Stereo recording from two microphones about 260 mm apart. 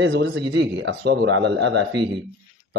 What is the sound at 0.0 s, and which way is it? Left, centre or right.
Speech, right.